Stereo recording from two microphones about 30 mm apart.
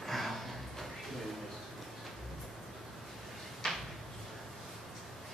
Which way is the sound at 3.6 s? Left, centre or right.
Centre.